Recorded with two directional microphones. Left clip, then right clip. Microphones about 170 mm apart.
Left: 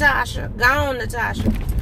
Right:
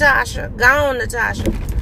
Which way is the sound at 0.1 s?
20° right (ahead or behind).